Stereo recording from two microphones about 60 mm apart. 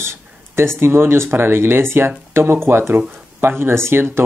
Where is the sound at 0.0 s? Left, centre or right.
Right.